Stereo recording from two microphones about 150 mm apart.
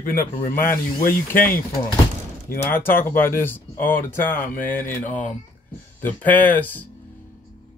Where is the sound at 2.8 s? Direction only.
15° left (ahead or behind).